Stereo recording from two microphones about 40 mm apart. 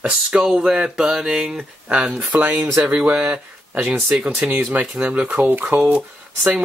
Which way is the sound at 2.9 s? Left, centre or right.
Right.